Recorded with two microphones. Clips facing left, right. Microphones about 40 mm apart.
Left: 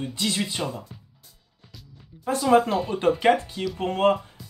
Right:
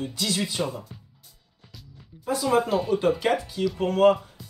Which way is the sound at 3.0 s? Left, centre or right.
Left.